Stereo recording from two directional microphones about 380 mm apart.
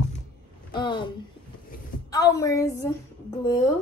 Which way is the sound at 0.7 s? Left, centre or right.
Centre.